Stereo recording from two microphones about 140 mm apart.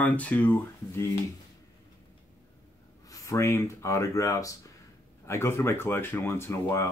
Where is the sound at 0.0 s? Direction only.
10° left (ahead or behind).